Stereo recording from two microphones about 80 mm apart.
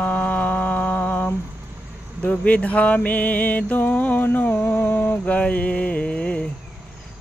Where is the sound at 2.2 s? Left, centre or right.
Centre.